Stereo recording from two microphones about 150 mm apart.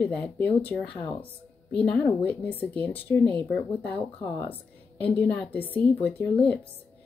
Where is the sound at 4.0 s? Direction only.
20° left (ahead or behind).